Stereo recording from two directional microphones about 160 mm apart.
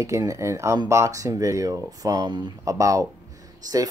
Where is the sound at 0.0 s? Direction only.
20° right (ahead or behind).